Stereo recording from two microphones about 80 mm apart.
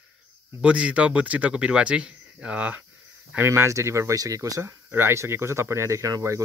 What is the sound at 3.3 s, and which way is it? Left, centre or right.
Speech, right.